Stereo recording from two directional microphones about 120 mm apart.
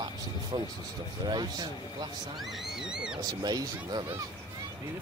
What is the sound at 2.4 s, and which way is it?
Speech, centre (ahead or behind).